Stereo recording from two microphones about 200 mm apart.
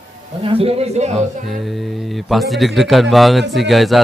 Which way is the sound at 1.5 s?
Centre (ahead or behind).